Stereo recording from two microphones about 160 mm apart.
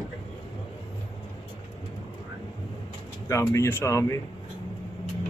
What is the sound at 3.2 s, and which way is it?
Speech, 20° left (ahead or behind).